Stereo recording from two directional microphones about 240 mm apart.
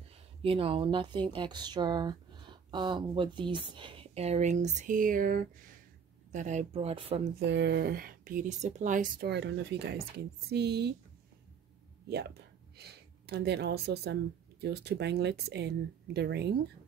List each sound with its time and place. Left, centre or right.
0.4 s speech: right
7.3 s speech: right
12.7 s speech: right